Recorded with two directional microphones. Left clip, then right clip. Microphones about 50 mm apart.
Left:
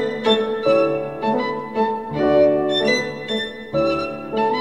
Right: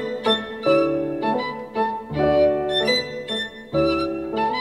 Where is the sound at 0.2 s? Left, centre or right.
Right.